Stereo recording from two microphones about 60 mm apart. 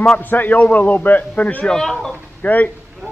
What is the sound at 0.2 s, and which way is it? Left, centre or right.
A man's voice, left.